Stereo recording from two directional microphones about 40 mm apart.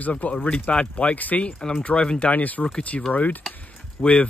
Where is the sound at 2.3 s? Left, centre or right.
Left.